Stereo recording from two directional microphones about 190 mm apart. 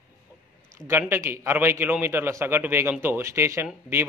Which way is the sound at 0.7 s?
15° right (ahead or behind).